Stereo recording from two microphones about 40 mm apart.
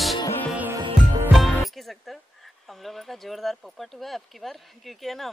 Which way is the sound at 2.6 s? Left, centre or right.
Centre.